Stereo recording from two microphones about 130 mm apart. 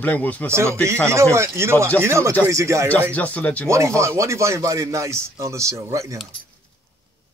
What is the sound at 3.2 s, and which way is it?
Speech, 10° left (ahead or behind).